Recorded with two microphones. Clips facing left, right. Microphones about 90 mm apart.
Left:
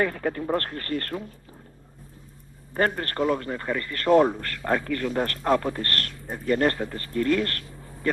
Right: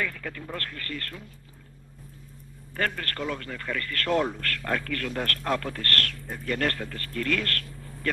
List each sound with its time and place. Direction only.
0.0 s speech: 35° left (ahead or behind)
2.7 s a man's voice: 30° left (ahead or behind)